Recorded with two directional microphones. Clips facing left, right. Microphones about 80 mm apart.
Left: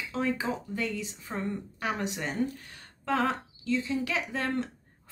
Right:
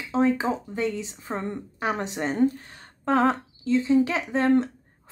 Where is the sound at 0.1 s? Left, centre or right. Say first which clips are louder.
Right 8 dB; right.